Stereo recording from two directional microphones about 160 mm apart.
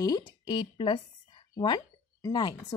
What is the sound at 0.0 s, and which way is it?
A woman's voice, 25° left (ahead or behind).